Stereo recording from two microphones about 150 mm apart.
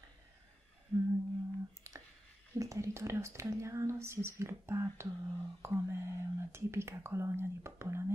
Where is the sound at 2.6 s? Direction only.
20° right (ahead or behind).